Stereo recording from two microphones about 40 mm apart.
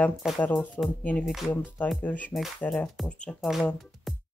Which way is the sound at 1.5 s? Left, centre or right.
Left.